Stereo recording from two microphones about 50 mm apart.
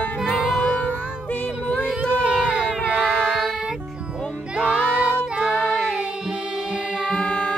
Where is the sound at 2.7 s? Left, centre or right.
Centre.